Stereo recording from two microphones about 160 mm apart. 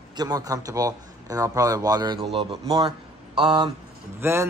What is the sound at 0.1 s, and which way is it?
A man's voice, 25° right (ahead or behind).